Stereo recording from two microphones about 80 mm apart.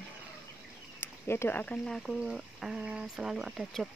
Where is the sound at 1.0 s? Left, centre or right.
Left.